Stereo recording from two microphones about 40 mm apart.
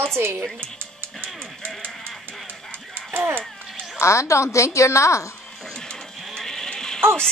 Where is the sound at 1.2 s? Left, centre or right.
Right.